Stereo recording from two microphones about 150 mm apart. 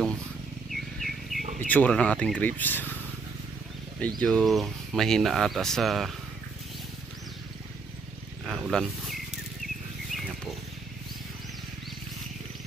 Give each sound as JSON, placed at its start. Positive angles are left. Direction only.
{"t": 0.7, "sound": "bird", "side_deg": 0}
{"t": 1.4, "sound": "a sound", "side_deg": -60}
{"t": 1.7, "sound": "speech", "side_deg": 10}
{"t": 4.2, "sound": "speech", "side_deg": 5}
{"t": 8.5, "sound": "wild animals", "side_deg": 0}